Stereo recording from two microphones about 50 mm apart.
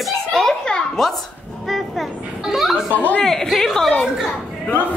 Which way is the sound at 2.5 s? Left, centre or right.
Centre.